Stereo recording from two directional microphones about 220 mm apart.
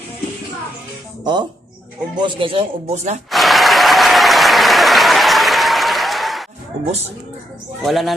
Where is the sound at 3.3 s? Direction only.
Centre (ahead or behind).